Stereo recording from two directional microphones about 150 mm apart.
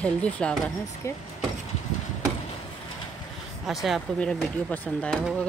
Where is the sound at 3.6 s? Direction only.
Centre (ahead or behind).